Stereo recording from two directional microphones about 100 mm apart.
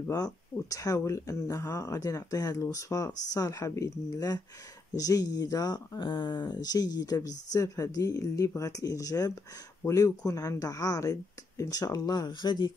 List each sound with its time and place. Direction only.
0.1 s speech: 35° left (ahead or behind)
6.0 s speech: 50° left (ahead or behind)